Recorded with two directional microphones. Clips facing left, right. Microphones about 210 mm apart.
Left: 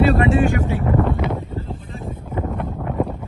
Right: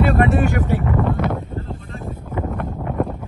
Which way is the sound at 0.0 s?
50° right (ahead or behind).